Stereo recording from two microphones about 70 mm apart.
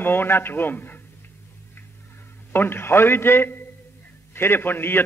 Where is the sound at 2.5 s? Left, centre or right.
Left.